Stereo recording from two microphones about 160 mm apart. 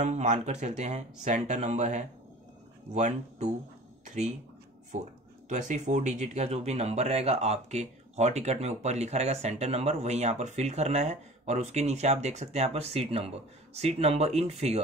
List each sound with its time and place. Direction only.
0.0 s speech: 50° right (ahead or behind)
4.0 s a sound: 50° right (ahead or behind)
5.5 s speech: 50° right (ahead or behind)